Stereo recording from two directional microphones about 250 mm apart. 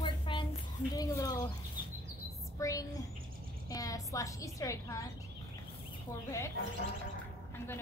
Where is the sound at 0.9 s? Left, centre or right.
Centre.